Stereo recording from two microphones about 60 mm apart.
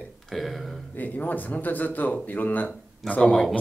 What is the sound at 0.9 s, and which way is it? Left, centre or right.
Speech, left.